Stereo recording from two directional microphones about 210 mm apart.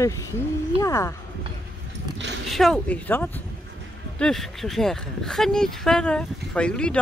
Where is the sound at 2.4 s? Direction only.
Centre (ahead or behind).